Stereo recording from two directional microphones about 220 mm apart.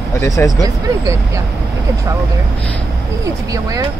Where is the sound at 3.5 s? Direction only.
15° right (ahead or behind).